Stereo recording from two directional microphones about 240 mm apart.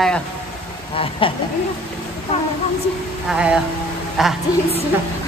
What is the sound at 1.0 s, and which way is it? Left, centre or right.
Speech, left.